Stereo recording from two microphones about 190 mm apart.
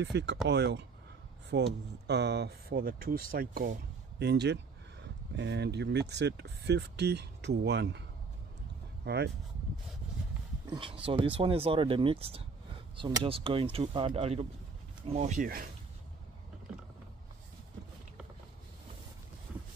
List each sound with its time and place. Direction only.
0.0 s speech: 65° right (ahead or behind); by 3.7 s 50° right (ahead or behind)
4.2 s speech: 65° right (ahead or behind)
9.0 s speech: 60° right (ahead or behind)
10.7 s speech: 25° right (ahead or behind); by 15.7 s 45° right (ahead or behind)